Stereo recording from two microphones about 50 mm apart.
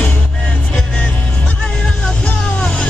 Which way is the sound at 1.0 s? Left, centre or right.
Left.